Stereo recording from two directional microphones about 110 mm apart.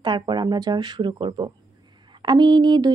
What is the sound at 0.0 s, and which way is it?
Speech, 45° right (ahead or behind).